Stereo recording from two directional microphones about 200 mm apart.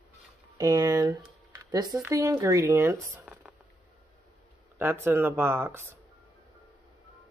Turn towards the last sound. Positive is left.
turn(degrees=-10)  # may be behind; listen again after turning